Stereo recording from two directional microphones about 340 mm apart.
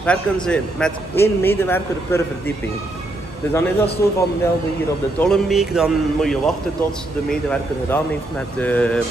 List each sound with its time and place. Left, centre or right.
0.0 s a man's voice: centre
3.5 s a man's voice: centre
5.2 s a man's voice: centre